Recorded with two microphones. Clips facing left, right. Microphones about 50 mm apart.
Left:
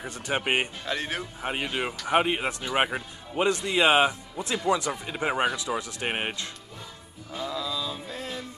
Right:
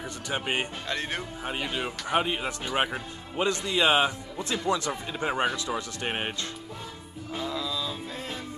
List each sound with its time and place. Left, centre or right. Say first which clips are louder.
0.0 s speech: left 3 dB; left
0.8 s speech: left 1 dB; centre
1.4 s speech: left 3 dB; left
7.4 s a sound: left 1 dB; centre